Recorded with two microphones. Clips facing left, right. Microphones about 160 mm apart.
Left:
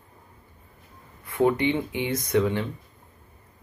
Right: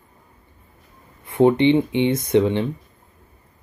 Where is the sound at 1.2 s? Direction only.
25° right (ahead or behind).